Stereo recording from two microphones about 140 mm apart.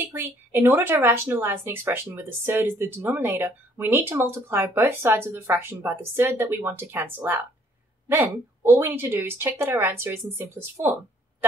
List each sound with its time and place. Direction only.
0.1 s speech: 15° right (ahead or behind)